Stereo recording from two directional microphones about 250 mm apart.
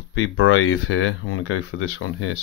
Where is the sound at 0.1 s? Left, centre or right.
Left.